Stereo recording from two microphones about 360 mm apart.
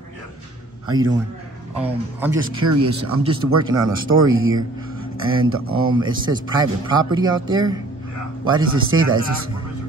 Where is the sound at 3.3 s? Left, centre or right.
Right.